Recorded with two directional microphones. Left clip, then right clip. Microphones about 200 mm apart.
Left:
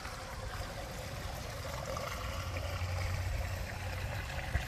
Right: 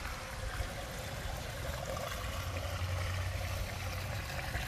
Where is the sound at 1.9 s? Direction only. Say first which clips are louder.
Even; centre (ahead or behind).